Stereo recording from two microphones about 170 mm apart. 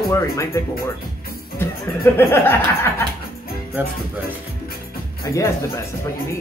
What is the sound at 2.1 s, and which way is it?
Speech, 10° left (ahead or behind).